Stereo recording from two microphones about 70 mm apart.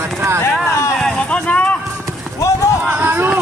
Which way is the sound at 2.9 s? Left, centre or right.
Right.